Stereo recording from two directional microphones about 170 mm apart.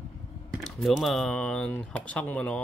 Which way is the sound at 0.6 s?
Centre (ahead or behind).